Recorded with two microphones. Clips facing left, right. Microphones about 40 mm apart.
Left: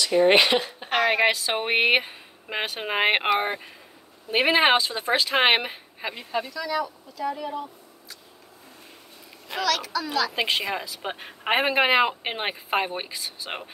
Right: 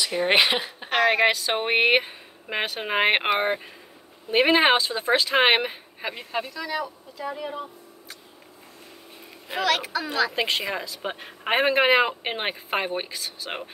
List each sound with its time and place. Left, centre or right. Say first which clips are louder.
0.1 s speech: left 4 dB; centre
4.3 s speech: right 1 dB; centre
6.3 s speech: left 3 dB; centre
9.5 s a woman's voice: right 1 dB; right
10.3 s speech: even; centre